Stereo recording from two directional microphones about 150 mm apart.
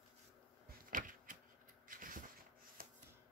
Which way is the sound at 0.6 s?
65° right (ahead or behind).